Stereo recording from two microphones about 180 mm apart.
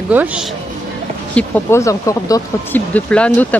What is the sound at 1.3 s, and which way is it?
Speech, 15° left (ahead or behind).